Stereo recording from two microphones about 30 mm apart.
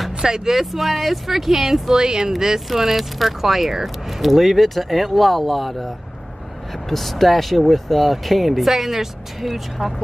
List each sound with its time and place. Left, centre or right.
0.2 s speech: right
0.6 s speech: centre
2.0 s speech: right; by 9.9 s centre